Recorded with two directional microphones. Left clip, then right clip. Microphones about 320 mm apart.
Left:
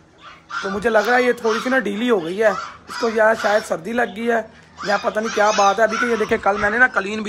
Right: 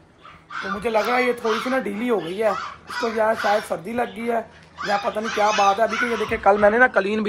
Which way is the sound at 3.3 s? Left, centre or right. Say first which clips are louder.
Left 3 dB; left.